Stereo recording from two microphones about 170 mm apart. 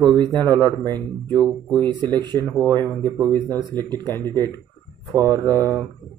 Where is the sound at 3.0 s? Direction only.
25° right (ahead or behind).